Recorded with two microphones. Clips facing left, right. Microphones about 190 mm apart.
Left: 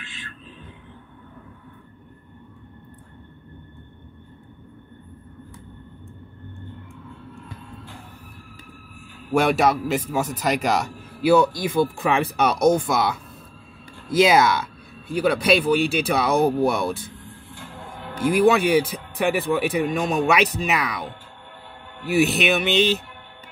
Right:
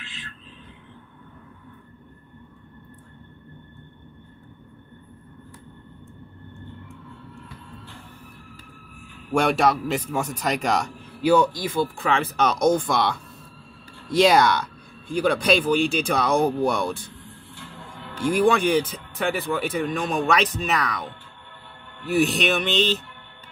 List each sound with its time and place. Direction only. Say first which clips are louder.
0.0 s a sound: left 1 dB; 50° left (ahead or behind)
9.3 s speech: left 1 dB; 5° left (ahead or behind)
17.6 s music: left 3 dB; 45° left (ahead or behind)
18.4 s speech: left 2 dB; 5° left (ahead or behind)